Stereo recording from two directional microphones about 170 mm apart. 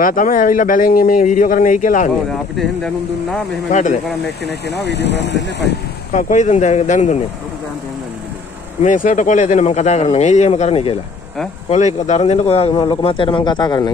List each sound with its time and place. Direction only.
0.0 s speech: 50° left (ahead or behind)
2.5 s speech: centre (ahead or behind)
3.7 s speech: 45° left (ahead or behind)
4.6 s speech: 80° left
6.1 s speech: 45° left (ahead or behind)
8.8 s a man's voice: 50° left (ahead or behind); by 13.8 s 25° left (ahead or behind)